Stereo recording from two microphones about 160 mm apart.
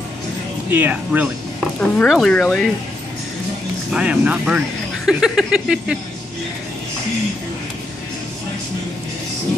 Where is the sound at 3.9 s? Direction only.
5° right (ahead or behind).